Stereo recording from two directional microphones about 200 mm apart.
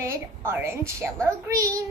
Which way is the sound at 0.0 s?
10° right (ahead or behind).